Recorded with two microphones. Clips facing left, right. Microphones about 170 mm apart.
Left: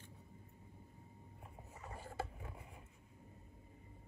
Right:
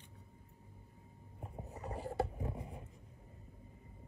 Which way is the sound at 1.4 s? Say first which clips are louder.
Right 9 dB; 35° right (ahead or behind).